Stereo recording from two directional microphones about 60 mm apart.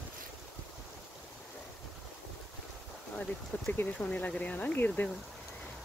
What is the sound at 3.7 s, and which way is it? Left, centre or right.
Speech, left.